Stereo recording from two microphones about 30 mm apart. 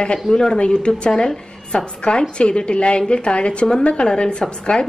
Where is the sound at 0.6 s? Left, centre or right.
Left.